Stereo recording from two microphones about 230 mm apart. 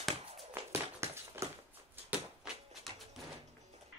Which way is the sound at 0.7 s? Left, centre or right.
Centre.